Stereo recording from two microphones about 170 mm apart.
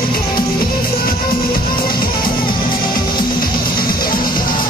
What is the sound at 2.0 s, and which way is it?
Music, 25° left (ahead or behind).